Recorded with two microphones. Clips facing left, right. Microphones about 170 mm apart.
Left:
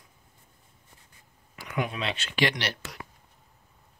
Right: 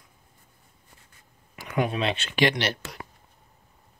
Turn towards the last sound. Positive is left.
turn(degrees=-25)  # may be behind; listen again after turning